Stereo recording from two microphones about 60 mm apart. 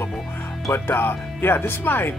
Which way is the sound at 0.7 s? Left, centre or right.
Left.